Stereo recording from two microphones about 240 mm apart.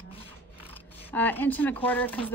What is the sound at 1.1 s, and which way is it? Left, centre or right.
Speech, centre.